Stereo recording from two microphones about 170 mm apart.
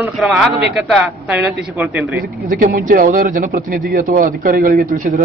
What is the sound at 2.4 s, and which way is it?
Speech, 55° right (ahead or behind).